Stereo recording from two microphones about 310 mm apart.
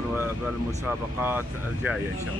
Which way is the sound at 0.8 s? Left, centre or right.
Centre.